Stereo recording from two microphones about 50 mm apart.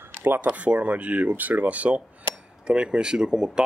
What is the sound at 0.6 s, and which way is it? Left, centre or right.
Speech, right.